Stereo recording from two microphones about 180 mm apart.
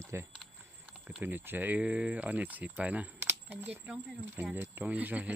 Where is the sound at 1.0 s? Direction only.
10° right (ahead or behind).